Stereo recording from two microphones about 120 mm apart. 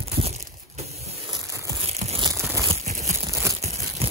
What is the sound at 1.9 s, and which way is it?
Crumpling, 60° right (ahead or behind).